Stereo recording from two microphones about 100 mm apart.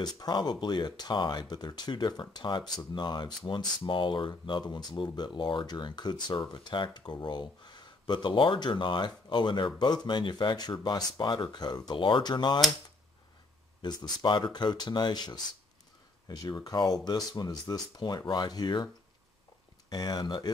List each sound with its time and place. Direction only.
0.0 s speech: 45° left (ahead or behind)
13.8 s speech: 45° left (ahead or behind)
19.9 s speech: 45° left (ahead or behind)